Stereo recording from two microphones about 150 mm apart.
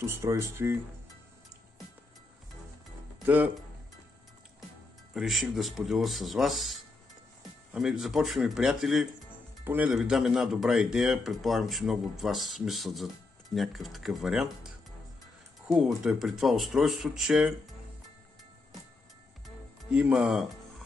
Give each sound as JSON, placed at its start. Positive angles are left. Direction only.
{"t": 0.0, "sound": "speech", "side_deg": -20}
{"t": 3.3, "sound": "speech", "side_deg": -10}
{"t": 5.1, "sound": "speech", "side_deg": 0}
{"t": 19.9, "sound": "speech", "side_deg": -5}